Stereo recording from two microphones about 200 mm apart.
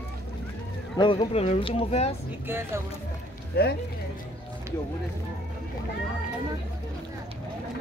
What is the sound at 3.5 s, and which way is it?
Speech, 50° left (ahead or behind).